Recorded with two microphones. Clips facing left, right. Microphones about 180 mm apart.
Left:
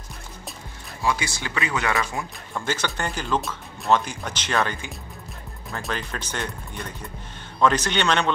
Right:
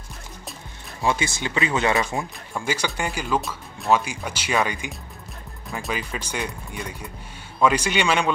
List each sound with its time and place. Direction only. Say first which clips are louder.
1.0 s speech: right 2 dB; 25° right (ahead or behind)
2.5 s speech: right 1 dB; 10° right (ahead or behind)